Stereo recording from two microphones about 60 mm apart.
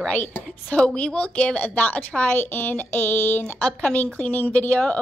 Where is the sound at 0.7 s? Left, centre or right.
Centre.